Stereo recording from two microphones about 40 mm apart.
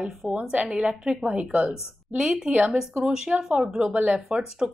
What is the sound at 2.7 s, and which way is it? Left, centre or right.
A woman's voice, centre.